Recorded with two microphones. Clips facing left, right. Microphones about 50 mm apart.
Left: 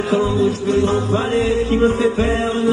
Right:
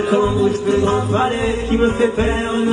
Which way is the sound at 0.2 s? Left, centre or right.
Right.